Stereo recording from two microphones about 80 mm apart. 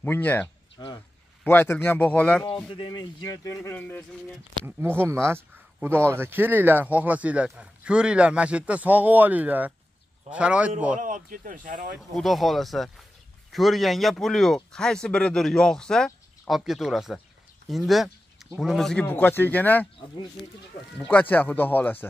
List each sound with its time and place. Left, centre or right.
0.0 s speech: left
0.7 s speech: left
1.4 s speech: left
3.3 s speech: left
3.7 s speech: left
4.6 s a man's voice: right
12.0 s speech: centre
17.6 s a sound: centre
18.6 s speech: centre
18.9 s speech: left
20.0 s speech: left
21.1 s speech: left